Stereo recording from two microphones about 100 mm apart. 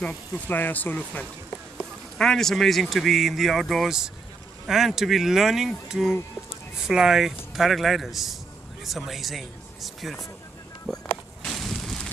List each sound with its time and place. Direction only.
0.5 s speech: 20° left (ahead or behind)
2.1 s speech: 5° left (ahead or behind)
10.9 s a sound: 5° left (ahead or behind)